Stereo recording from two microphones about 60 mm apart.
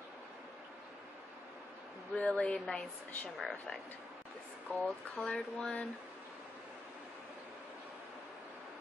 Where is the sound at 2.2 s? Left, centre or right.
Centre.